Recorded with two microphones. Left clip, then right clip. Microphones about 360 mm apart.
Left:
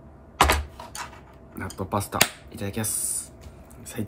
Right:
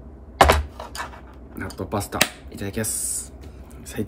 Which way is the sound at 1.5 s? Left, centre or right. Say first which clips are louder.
Right 1 dB; centre.